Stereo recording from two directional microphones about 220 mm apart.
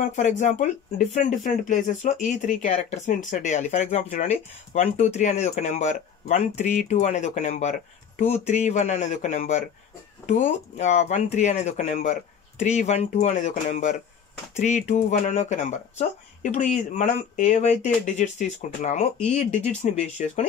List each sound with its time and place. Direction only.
0.0 s speech: 35° left (ahead or behind)